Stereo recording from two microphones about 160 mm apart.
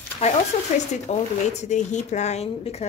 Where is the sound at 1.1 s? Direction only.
45° left (ahead or behind).